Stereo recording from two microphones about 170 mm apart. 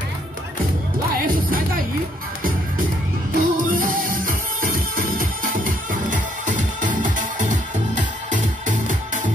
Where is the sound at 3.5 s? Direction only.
55° right (ahead or behind).